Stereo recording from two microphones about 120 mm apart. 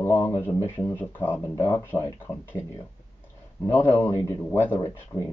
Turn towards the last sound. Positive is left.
turn(degrees=20)  # may be behind; listen again after turning